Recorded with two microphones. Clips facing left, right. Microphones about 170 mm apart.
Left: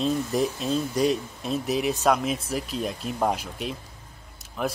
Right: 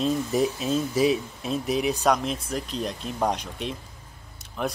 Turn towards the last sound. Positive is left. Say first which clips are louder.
# left 1 dB
turn(degrees=0)  # may be behind; listen again after turning